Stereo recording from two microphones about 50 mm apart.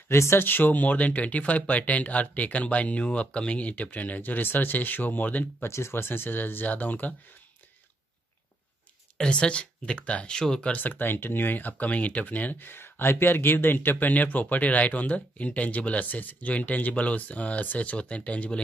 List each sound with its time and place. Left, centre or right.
0.1 s speech: left
0.5 s speech: left
5.6 s speech: left
9.2 s speech: centre
10.3 s speech: centre
10.7 s speech: left
12.6 s speech: left